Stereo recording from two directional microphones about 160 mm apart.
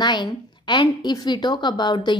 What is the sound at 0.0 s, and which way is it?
Speech, 30° left (ahead or behind).